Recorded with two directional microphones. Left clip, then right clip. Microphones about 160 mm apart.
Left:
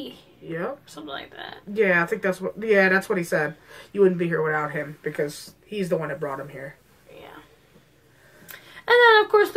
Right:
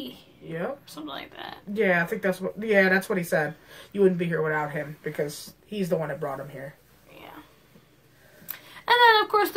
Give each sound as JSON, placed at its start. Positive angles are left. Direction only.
{"t": 0.9, "sound": "speech", "side_deg": -15}
{"t": 1.7, "sound": "speech", "side_deg": 20}
{"t": 8.5, "sound": "speech", "side_deg": -10}